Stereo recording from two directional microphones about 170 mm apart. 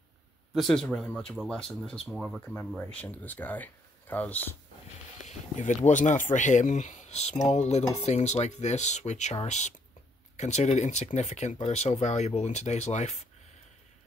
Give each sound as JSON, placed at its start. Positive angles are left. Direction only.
{"t": 0.6, "sound": "speech", "side_deg": 0}
{"t": 5.2, "sound": "speech", "side_deg": 45}